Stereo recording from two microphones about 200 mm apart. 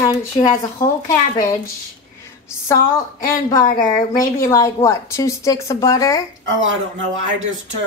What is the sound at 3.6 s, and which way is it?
Speech, 40° left (ahead or behind).